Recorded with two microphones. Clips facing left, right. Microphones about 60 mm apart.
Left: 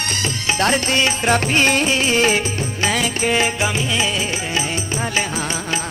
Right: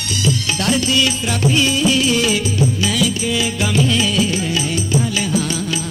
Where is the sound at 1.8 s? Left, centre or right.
Left.